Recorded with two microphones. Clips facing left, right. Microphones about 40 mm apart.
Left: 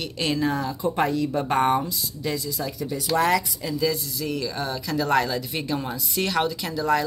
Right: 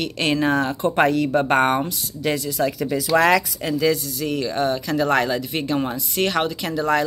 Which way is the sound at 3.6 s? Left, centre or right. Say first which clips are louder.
Right 5 dB; right.